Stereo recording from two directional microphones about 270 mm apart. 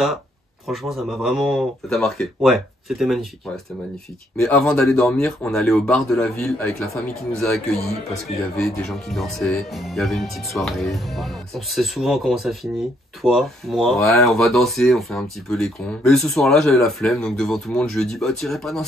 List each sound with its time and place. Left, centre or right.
0.7 s speech: centre
4.4 s speech: centre